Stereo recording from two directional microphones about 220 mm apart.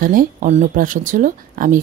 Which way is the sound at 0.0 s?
40° right (ahead or behind).